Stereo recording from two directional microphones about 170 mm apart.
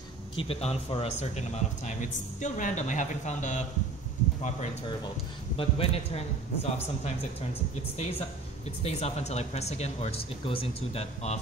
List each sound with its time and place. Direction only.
0.4 s a man's voice: 35° left (ahead or behind)
5.6 s speech: 35° left (ahead or behind)
8.8 s speech: 40° left (ahead or behind)